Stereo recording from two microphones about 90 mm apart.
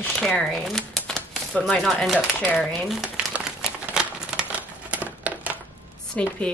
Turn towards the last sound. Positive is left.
turn(degrees=15)  # may be behind; listen again after turning